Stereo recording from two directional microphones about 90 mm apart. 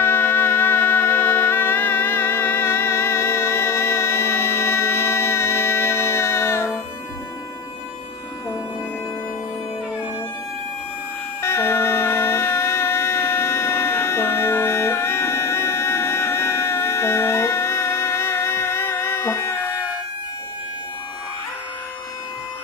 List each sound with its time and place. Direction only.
0.0 s music: 20° left (ahead or behind)
11.4 s music: 30° left (ahead or behind)